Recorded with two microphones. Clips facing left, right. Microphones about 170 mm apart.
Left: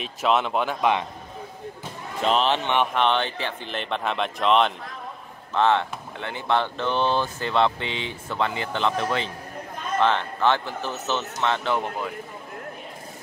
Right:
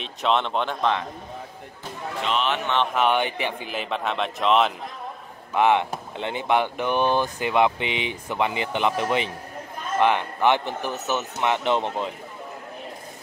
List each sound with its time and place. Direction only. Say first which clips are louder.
0.0 s speech: left 1 dB; 5° left (ahead or behind)
2.2 s speech: left 4 dB; 35° left (ahead or behind)
2.9 s speech: right 1 dB; 10° right (ahead or behind)
5.5 s speech: right 1 dB; 15° right (ahead or behind)